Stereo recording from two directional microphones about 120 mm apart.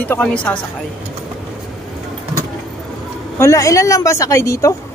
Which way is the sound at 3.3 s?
25° left (ahead or behind).